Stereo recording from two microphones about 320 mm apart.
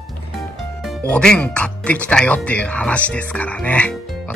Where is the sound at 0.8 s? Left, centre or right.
Centre.